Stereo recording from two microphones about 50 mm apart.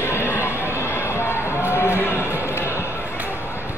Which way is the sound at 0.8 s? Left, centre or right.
Left.